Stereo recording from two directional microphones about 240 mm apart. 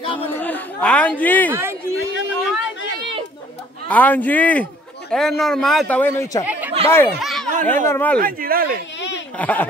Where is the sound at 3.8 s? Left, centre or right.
Centre.